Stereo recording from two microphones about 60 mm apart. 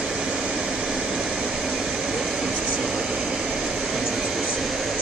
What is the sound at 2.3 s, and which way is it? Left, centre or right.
Vehicle, centre.